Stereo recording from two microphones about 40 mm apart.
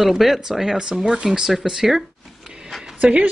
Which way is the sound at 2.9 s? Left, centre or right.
Right.